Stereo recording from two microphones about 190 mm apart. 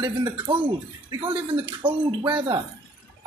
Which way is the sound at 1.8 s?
25° right (ahead or behind).